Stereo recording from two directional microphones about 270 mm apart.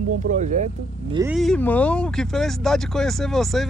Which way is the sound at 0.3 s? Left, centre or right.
Right.